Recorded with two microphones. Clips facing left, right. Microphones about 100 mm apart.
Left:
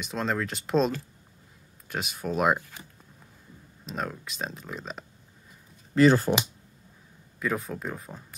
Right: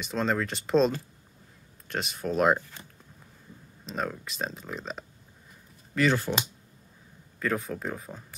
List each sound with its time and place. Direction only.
0.0 s speech: centre (ahead or behind)
5.9 s speech: 35° left (ahead or behind)
7.3 s speech: 5° left (ahead or behind)